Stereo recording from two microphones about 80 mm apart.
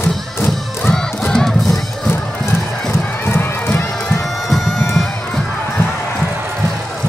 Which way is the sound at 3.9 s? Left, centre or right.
Centre.